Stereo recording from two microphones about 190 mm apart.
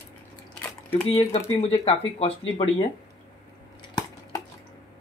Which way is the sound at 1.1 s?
35° left (ahead or behind).